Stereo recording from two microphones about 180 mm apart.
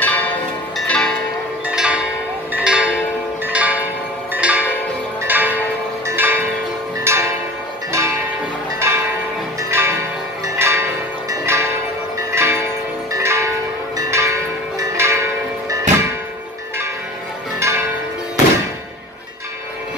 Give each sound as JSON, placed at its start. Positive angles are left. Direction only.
{"t": 0.0, "sound": "music", "side_deg": 10}
{"t": 1.7, "sound": "church bell", "side_deg": -5}
{"t": 7.1, "sound": "a sound", "side_deg": -15}
{"t": 7.9, "sound": "music", "side_deg": -15}
{"t": 8.7, "sound": "church bell", "side_deg": -15}
{"t": 9.6, "sound": "music", "side_deg": -15}
{"t": 10.4, "sound": "change ringing", "side_deg": -15}
{"t": 12.3, "sound": "bell", "side_deg": -15}
{"t": 13.1, "sound": "church bell", "side_deg": -15}
{"t": 17.6, "sound": "change ringing", "side_deg": -15}